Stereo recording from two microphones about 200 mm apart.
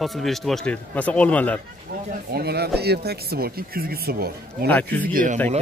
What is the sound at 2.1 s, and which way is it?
Speech, 50° right (ahead or behind).